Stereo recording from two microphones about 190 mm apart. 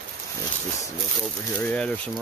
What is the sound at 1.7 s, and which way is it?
Speech, 5° left (ahead or behind).